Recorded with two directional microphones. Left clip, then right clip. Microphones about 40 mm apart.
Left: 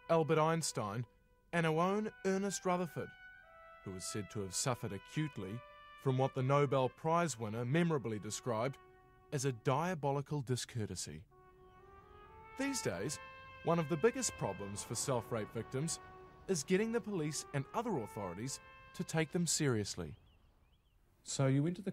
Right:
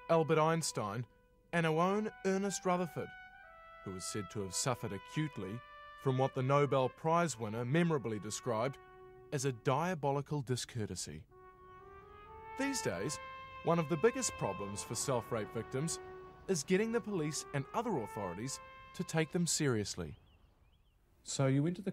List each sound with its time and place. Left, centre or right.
0.0 s speech: right
12.4 s speech: right
21.3 s speech: right